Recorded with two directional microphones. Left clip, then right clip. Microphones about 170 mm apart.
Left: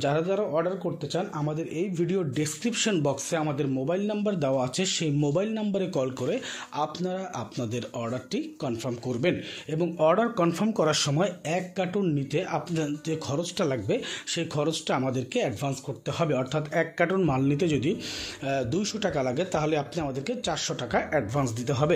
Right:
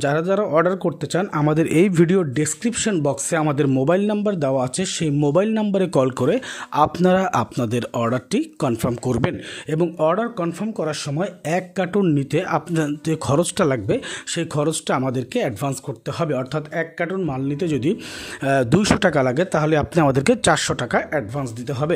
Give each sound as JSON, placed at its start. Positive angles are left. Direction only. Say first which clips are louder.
{"t": 0.0, "sound": "speech", "louder": "right 6 dB", "side_deg": -45}
{"t": 10.0, "sound": "speech", "louder": "even", "side_deg": -25}
{"t": 11.4, "sound": "speech", "louder": "right 6 dB", "side_deg": -45}
{"t": 16.7, "sound": "speech", "louder": "even", "side_deg": -20}
{"t": 17.6, "sound": "speech", "louder": "right 5 dB", "side_deg": -35}
{"t": 18.4, "sound": "speech", "louder": "right 10 dB", "side_deg": -50}
{"t": 21.1, "sound": "speech", "louder": "right 2 dB", "side_deg": -25}